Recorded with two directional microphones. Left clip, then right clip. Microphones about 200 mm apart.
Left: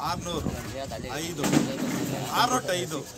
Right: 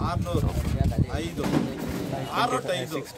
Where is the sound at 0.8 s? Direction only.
55° left (ahead or behind).